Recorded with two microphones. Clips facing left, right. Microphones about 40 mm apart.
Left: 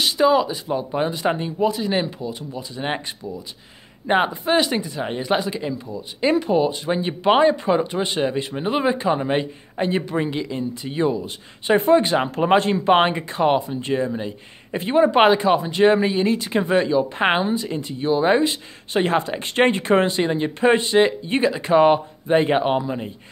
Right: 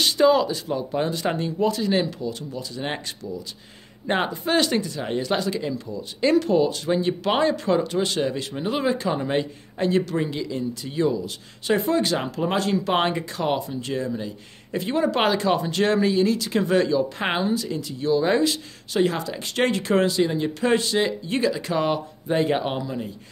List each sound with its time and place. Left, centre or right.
0.0 s speech: centre; by 23.1 s left